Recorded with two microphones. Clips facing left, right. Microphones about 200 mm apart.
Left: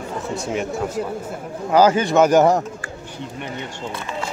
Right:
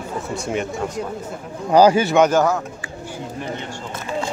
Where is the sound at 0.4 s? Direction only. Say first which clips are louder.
Even; centre (ahead or behind).